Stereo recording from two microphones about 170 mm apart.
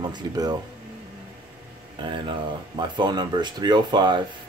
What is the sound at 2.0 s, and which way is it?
Speech, 30° right (ahead or behind).